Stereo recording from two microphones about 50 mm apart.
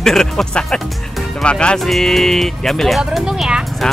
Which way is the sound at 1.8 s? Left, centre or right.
Centre.